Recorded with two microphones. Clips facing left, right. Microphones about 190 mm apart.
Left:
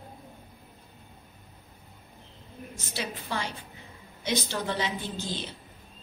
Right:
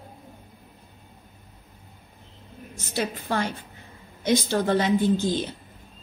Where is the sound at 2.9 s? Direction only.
50° right (ahead or behind).